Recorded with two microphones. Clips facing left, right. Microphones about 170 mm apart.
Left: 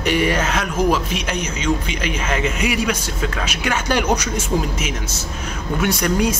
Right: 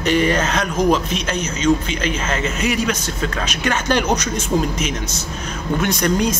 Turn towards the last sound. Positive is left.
turn(degrees=10)  # may be behind; listen again after turning